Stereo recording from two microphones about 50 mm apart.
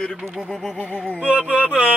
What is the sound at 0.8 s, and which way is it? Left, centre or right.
Music, left.